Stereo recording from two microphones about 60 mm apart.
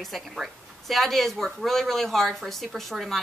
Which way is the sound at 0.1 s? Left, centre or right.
Centre.